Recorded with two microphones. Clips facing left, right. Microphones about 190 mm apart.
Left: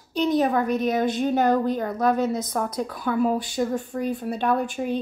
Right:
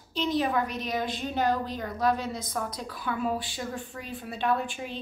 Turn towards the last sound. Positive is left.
turn(degrees=45)  # may be behind; listen again after turning